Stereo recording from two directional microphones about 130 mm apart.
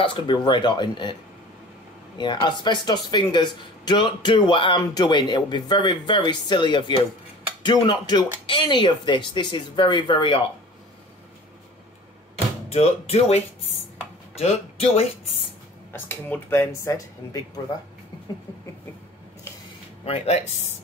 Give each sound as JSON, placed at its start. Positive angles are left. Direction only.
{"t": 0.0, "sound": "speech", "side_deg": 40}
{"t": 2.1, "sound": "speech", "side_deg": 35}
{"t": 12.6, "sound": "speech", "side_deg": 55}
{"t": 14.4, "sound": "a man's voice", "side_deg": 55}
{"t": 15.9, "sound": "speech", "side_deg": 15}